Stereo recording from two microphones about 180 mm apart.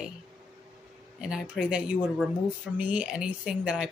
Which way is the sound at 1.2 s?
5° right (ahead or behind).